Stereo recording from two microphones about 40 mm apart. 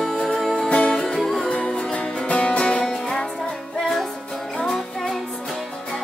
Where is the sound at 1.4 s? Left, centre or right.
Left.